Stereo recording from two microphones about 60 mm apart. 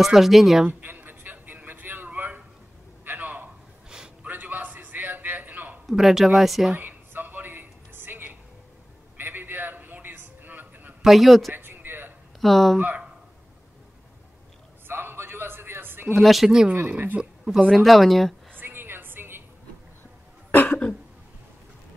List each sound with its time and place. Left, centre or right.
0.0 s speech: centre
0.7 s a sound: right
5.9 s speech: centre
6.8 s a sound: right
11.0 s speech: centre
11.5 s a sound: right
12.4 s speech: centre
14.9 s a sound: right
16.2 s speech: centre
16.7 s speech: right
17.6 s speech: centre
18.6 s music: right
20.5 s cough: left